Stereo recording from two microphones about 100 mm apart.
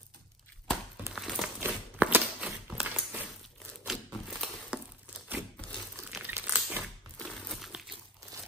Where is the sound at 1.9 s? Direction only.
10° right (ahead or behind).